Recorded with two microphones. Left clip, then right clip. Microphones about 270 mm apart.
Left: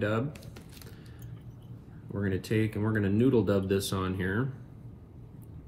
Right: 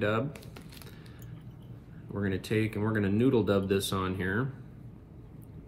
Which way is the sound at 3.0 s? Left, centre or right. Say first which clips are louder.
Left 1 dB; centre.